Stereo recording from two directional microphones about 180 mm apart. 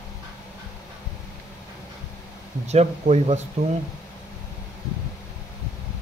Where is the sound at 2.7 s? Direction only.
35° right (ahead or behind).